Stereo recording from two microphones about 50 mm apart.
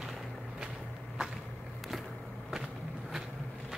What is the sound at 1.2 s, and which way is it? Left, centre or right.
Walk, centre.